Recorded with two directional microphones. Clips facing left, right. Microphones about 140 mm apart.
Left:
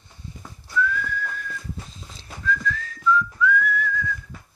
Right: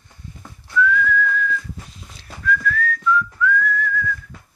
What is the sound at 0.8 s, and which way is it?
Whistling, 35° left (ahead or behind).